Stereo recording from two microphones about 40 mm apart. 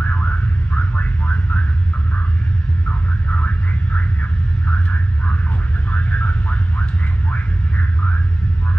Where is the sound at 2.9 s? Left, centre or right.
Left.